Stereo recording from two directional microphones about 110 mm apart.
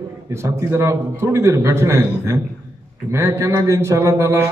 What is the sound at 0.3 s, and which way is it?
A man's voice, 25° right (ahead or behind).